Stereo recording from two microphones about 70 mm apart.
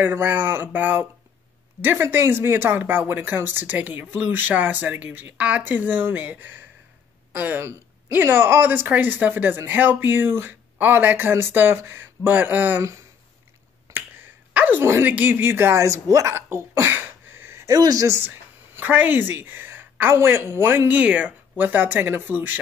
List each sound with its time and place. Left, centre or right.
0.0 s speech: right
13.8 s finger snapping: right
14.5 s a sound: right
14.8 s a woman's voice: right
15.8 s speech: right
16.3 s a sound: right
17.7 s speech: right
18.0 s a sound: right
18.9 s a woman's voice: right
20.9 s speech: centre